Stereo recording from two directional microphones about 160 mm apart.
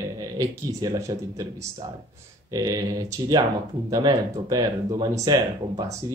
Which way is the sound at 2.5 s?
20° right (ahead or behind).